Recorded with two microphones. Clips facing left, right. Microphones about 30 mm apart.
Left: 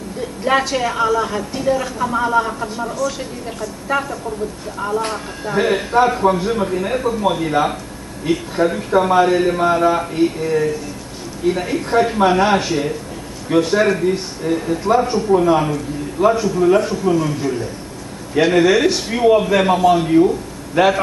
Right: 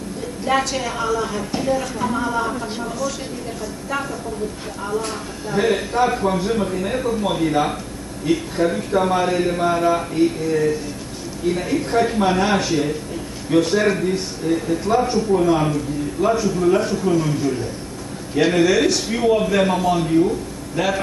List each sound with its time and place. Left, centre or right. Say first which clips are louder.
0.5 s a man's voice: left 3 dB; centre
3.9 s speech: left 6 dB; centre
5.6 s a man's voice: left 3 dB; centre